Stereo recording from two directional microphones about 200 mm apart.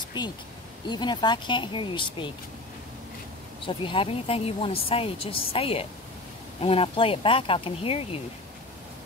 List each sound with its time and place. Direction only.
0.2 s speech: 20° left (ahead or behind)
3.6 s speech: 25° left (ahead or behind)